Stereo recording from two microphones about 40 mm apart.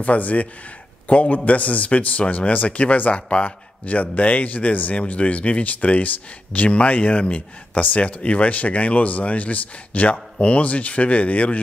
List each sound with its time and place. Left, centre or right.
0.0 s a man's voice: left